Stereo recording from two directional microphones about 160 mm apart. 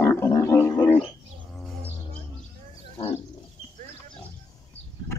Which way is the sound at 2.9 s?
35° left (ahead or behind).